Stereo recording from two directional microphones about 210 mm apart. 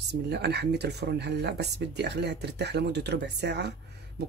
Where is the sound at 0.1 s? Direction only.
50° right (ahead or behind).